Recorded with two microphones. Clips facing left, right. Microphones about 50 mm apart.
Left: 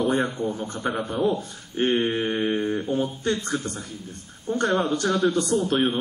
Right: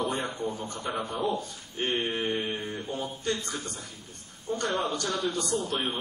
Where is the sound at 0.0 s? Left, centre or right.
Left.